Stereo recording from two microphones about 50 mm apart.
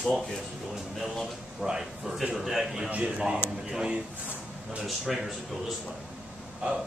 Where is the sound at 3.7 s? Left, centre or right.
Centre.